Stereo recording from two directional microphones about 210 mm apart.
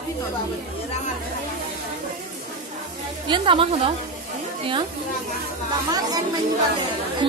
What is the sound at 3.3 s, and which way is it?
Speech, 25° right (ahead or behind).